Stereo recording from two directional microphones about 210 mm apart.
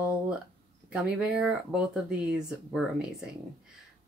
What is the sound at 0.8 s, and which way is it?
Speech, 5° right (ahead or behind).